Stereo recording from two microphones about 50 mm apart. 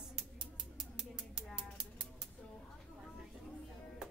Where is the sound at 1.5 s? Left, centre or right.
Centre.